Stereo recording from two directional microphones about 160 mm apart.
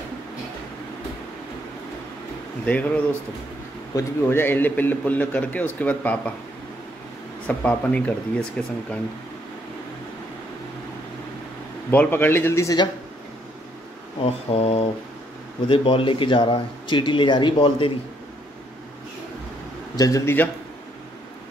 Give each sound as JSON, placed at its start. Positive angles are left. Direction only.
{"t": 2.6, "sound": "a man's voice", "side_deg": 10}
{"t": 3.9, "sound": "a man's voice", "side_deg": 15}
{"t": 7.4, "sound": "a man's voice", "side_deg": 10}
{"t": 11.9, "sound": "a man's voice", "side_deg": 10}
{"t": 14.2, "sound": "speech", "side_deg": 40}
{"t": 20.0, "sound": "a man's voice", "side_deg": 20}